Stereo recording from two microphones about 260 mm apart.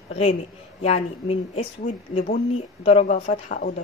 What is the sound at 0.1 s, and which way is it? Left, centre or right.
Speech, left.